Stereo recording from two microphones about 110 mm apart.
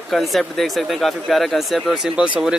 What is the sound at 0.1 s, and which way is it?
Speech, centre (ahead or behind).